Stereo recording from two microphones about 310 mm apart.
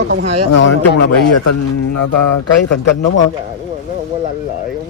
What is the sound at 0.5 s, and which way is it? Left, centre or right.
Speech, left.